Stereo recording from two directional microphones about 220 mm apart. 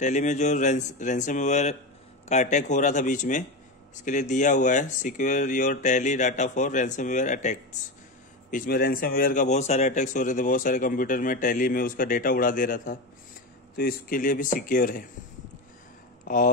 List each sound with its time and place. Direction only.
0.0 s speech: 35° left (ahead or behind)
16.3 s speech: 40° left (ahead or behind)